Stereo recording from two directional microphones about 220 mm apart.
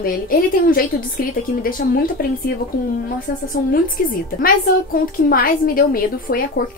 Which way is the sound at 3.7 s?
40° left (ahead or behind).